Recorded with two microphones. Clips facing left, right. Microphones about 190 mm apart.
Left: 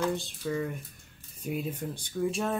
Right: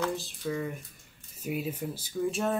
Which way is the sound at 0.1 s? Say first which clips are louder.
Left 1 dB; centre (ahead or behind).